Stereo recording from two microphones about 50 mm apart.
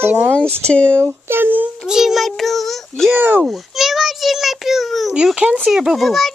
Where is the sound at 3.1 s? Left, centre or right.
Right.